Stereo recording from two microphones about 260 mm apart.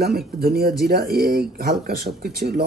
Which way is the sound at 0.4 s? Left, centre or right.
Right.